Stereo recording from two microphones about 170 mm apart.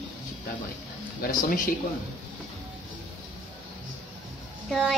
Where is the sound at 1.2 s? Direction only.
60° left (ahead or behind).